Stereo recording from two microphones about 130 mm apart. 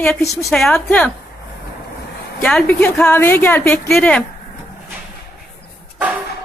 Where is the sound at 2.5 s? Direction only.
10° left (ahead or behind).